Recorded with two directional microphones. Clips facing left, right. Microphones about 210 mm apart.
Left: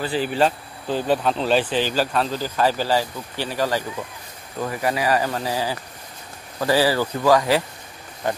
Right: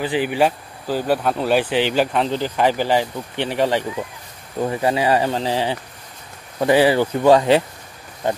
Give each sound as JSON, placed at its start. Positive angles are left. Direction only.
{"t": 0.0, "sound": "speech", "side_deg": -15}